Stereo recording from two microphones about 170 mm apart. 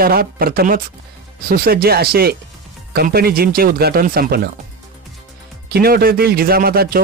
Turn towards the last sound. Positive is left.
turn(degrees=-60)  # may be behind; listen again after turning